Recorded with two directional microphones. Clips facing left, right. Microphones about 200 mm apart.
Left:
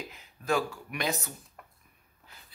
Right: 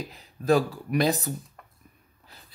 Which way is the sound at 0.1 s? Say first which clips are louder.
Right 8 dB; 35° right (ahead or behind).